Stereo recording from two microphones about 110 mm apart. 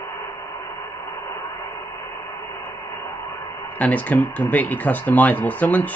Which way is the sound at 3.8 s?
15° left (ahead or behind).